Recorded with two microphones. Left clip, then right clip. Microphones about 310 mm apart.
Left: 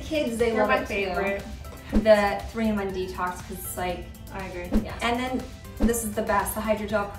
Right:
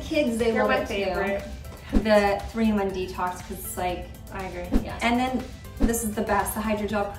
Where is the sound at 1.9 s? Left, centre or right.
Centre.